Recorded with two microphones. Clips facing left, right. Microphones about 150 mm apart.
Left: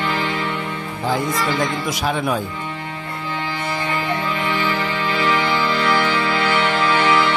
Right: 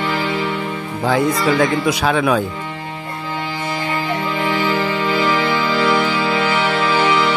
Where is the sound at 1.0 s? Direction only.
75° right (ahead or behind).